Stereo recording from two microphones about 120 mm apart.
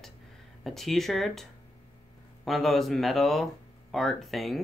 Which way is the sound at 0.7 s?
Centre (ahead or behind).